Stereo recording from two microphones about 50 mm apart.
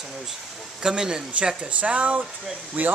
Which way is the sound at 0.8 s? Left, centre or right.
Centre.